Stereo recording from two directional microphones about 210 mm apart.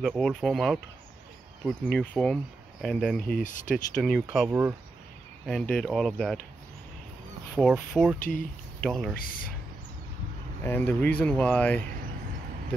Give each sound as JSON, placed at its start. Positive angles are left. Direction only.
{"t": 0.0, "sound": "speech", "side_deg": 0}
{"t": 5.5, "sound": "speech", "side_deg": 5}
{"t": 7.6, "sound": "speech", "side_deg": 0}
{"t": 8.2, "sound": "speech", "side_deg": 40}
{"t": 8.8, "sound": "speech", "side_deg": 0}
{"t": 10.6, "sound": "speech", "side_deg": 10}